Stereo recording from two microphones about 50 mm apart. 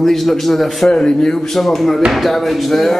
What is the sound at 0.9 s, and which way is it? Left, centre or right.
A man's voice, centre.